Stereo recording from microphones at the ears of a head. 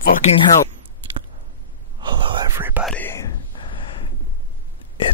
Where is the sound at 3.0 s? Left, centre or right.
Left.